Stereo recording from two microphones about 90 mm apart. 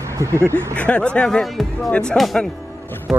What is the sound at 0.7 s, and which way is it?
Speech, 15° left (ahead or behind).